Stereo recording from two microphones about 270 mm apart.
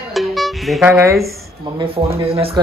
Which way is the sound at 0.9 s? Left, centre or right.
Centre.